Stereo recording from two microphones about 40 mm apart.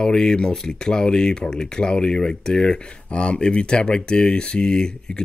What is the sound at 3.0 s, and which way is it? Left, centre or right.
Speech, left.